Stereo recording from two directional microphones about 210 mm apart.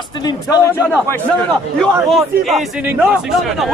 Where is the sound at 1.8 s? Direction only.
Centre (ahead or behind).